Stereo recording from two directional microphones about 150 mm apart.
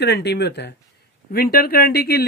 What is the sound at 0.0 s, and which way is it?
Speech, 90° left.